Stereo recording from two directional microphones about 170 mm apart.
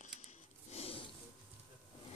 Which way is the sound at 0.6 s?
35° left (ahead or behind).